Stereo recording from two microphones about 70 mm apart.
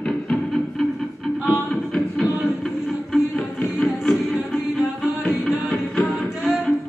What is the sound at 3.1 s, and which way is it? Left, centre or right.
Music, centre.